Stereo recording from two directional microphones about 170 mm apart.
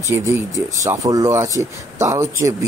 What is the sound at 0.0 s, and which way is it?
Speech, 15° right (ahead or behind).